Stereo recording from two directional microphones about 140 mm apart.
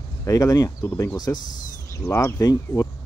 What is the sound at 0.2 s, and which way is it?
Speech, 25° left (ahead or behind).